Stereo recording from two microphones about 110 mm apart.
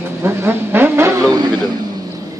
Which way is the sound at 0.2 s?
20° right (ahead or behind).